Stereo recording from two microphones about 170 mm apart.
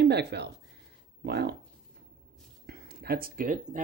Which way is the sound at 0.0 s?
75° right (ahead or behind).